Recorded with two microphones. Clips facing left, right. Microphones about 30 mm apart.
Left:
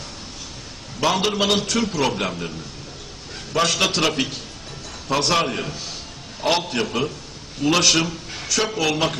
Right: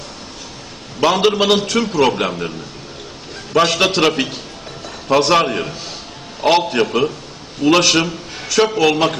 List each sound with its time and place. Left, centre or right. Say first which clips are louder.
1.0 s a man's voice: right 6 dB; centre
3.5 s a man's voice: right 6 dB; centre